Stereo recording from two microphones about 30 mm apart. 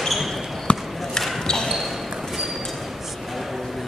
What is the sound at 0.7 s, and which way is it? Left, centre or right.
Basketball bounce, left.